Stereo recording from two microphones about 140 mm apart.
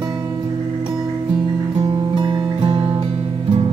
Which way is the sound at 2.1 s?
35° right (ahead or behind).